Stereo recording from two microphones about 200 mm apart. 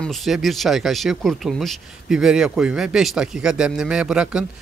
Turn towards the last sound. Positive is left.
turn(degrees=-5)  # may be behind; listen again after turning